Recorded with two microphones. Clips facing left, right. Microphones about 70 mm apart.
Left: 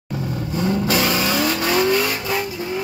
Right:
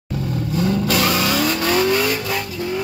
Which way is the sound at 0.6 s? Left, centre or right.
Centre.